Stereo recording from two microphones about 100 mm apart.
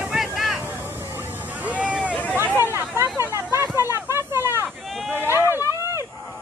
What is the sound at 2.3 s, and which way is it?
Hubbub, 20° right (ahead or behind).